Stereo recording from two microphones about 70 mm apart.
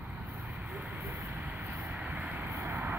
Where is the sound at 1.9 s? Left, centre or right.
Right.